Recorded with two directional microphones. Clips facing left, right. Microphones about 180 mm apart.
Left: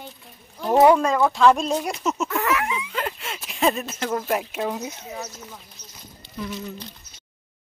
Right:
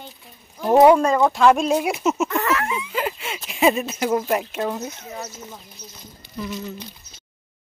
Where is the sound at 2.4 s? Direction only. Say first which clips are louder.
Right 1 dB; 10° left (ahead or behind).